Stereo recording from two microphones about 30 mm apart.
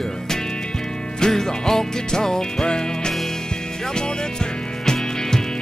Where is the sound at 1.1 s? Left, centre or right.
Centre.